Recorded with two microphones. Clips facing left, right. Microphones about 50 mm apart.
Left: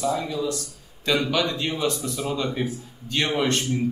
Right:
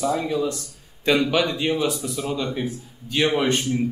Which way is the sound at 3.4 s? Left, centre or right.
Centre.